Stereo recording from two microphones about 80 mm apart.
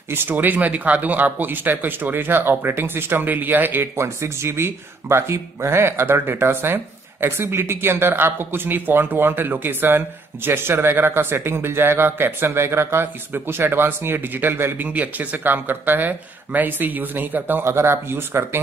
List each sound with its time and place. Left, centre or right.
0.1 s speech: right